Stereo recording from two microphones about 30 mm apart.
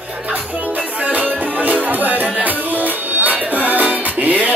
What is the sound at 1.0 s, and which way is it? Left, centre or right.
Music, right.